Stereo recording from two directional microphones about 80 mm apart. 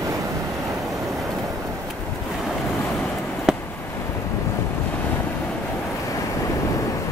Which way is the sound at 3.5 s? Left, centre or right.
Centre.